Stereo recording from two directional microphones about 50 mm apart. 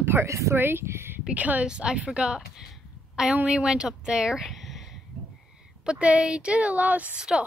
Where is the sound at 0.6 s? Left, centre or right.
Right.